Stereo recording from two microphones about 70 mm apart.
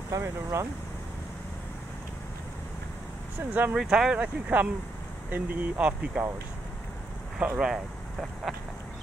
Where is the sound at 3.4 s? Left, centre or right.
Right.